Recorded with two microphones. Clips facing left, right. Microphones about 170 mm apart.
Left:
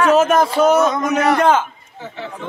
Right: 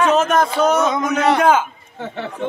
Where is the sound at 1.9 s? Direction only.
60° right (ahead or behind).